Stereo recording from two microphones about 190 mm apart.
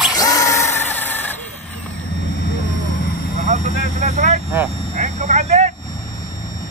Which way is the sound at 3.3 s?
40° right (ahead or behind).